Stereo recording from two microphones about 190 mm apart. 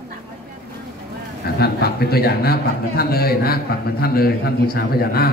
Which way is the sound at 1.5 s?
55° left (ahead or behind).